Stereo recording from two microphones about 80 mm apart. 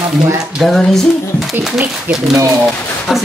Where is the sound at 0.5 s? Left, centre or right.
Centre.